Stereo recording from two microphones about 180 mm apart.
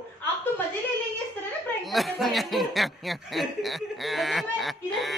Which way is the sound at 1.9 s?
Centre (ahead or behind).